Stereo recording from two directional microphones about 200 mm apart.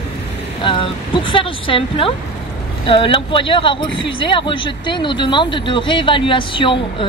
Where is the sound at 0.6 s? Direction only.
25° left (ahead or behind).